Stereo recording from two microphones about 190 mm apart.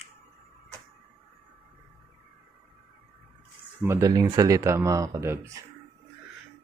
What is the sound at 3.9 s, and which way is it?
Speech, 20° right (ahead or behind).